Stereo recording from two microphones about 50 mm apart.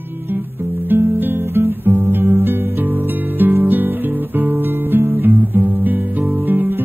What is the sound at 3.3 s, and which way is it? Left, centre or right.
Music, right.